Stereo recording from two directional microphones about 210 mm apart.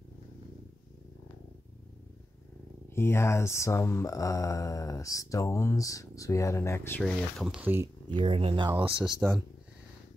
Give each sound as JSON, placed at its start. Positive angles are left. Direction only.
{"t": 2.9, "sound": "speech", "side_deg": 10}
{"t": 8.1, "sound": "speech", "side_deg": -25}
{"t": 9.2, "sound": "speech", "side_deg": -5}